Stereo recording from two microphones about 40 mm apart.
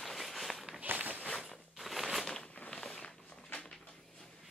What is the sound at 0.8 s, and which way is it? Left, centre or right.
Walk, right.